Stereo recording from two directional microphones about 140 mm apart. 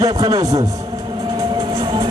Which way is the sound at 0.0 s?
25° right (ahead or behind).